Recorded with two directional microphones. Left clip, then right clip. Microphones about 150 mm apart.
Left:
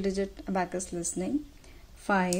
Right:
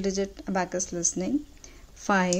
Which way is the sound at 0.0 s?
20° right (ahead or behind).